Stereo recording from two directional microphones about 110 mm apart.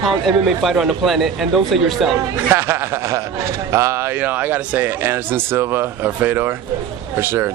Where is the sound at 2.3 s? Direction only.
20° right (ahead or behind).